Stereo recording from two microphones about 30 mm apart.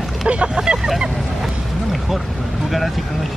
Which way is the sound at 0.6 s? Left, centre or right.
Right.